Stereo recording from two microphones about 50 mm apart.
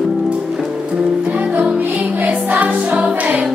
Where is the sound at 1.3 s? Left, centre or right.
Right.